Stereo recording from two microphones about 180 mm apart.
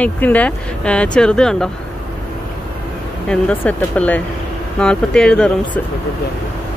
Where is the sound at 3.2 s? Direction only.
5° left (ahead or behind).